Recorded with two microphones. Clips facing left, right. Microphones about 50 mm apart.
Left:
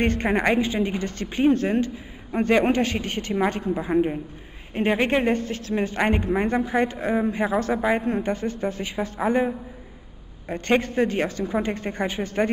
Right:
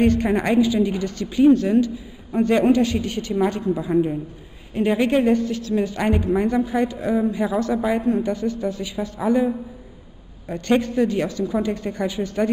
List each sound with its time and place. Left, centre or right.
0.0 s a woman's voice: left
10.5 s a woman's voice: left